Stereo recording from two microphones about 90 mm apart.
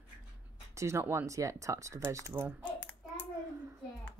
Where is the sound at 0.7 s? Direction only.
35° right (ahead or behind).